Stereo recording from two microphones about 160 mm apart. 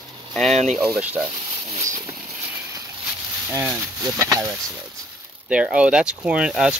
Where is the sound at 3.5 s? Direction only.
20° right (ahead or behind).